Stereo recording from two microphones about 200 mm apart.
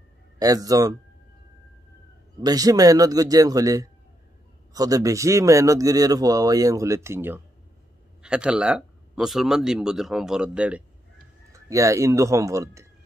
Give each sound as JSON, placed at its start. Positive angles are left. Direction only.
{"t": 0.4, "sound": "speech", "side_deg": -20}
{"t": 2.4, "sound": "speech", "side_deg": -20}